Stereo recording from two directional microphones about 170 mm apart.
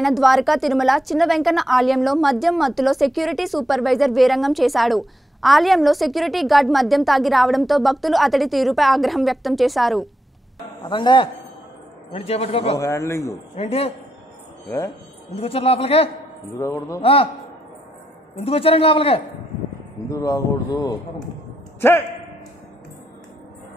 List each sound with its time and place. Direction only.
0.0 s a woman's voice: centre (ahead or behind)
10.6 s a man's voice: 25° left (ahead or behind)
12.7 s speech: 20° left (ahead or behind)
13.6 s a man's voice: 35° left (ahead or behind)
15.4 s a man's voice: 35° left (ahead or behind)
16.5 s a man's voice: 20° left (ahead or behind)
17.0 s a man's voice: 35° left (ahead or behind)
18.3 s a man's voice: 35° left (ahead or behind)
20.1 s speech: 20° left (ahead or behind)